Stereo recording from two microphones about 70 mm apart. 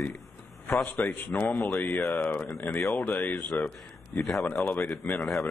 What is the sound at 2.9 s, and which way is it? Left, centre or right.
Speech, left.